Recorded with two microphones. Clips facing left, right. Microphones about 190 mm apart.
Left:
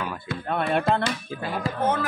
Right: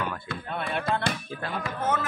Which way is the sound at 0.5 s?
50° left (ahead or behind).